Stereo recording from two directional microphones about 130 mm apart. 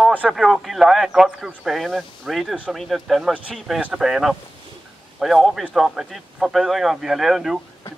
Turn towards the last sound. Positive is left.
turn(degrees=0)  # may be behind; listen again after turning